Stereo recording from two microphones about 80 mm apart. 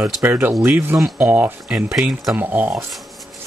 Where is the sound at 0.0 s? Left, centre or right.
Right.